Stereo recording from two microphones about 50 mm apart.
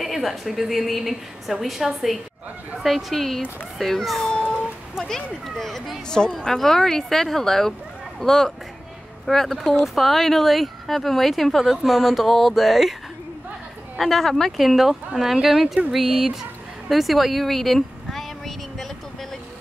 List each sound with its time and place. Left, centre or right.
0.0 s speech: centre
4.2 s cat: centre
5.0 s speech: centre
13.9 s speech: centre
16.9 s a sound: centre